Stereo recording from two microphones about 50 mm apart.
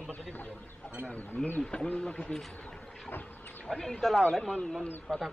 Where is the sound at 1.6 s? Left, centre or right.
Left.